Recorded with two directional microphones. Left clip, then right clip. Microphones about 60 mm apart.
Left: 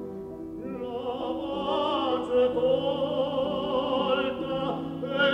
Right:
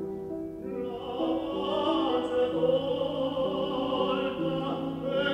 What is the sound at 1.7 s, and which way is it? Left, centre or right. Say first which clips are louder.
Music: left 1 dB; left.